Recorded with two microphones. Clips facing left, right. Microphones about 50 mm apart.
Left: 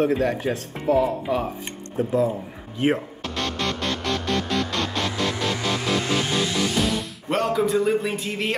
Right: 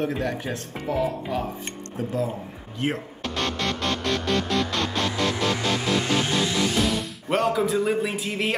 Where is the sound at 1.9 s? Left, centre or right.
Centre.